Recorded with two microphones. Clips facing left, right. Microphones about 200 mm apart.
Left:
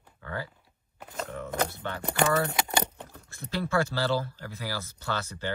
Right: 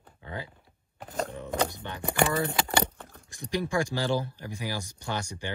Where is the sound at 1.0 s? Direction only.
40° right (ahead or behind).